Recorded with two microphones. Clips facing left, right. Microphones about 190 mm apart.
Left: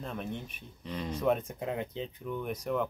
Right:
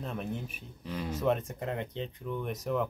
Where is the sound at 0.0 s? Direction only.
Centre (ahead or behind).